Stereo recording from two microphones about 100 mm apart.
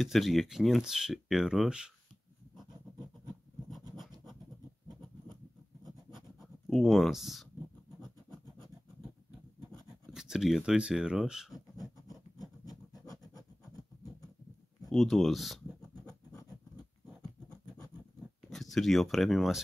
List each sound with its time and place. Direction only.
0.0 s speech: centre (ahead or behind)
6.7 s speech: centre (ahead or behind)
9.8 s speech: centre (ahead or behind)
11.8 s writing: centre (ahead or behind)
14.9 s speech: 5° left (ahead or behind)
18.5 s speech: centre (ahead or behind)